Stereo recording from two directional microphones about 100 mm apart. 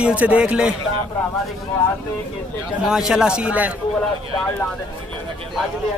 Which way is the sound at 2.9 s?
5° right (ahead or behind).